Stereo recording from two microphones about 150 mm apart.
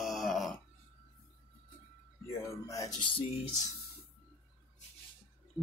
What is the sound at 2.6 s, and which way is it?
Music, 20° left (ahead or behind).